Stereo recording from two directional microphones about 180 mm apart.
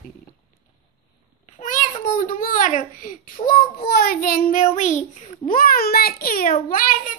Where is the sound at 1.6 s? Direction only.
45° left (ahead or behind).